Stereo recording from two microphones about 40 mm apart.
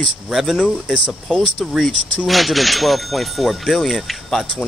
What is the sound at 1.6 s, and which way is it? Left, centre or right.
Speech, centre.